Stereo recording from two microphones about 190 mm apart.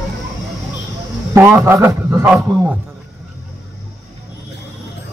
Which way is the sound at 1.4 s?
10° right (ahead or behind).